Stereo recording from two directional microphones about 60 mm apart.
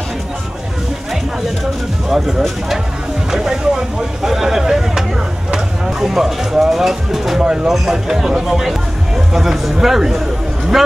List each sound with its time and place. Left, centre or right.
2.0 s speech: centre
3.3 s vehicle: centre
5.5 s speech: centre